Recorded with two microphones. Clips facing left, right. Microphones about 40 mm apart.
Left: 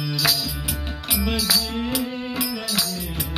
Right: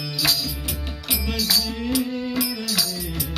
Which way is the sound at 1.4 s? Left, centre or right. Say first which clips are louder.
Left 1 dB; centre.